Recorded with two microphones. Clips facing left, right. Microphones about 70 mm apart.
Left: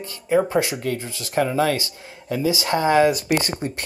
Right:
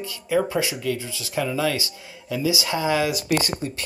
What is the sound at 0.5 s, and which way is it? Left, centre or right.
Speech, left.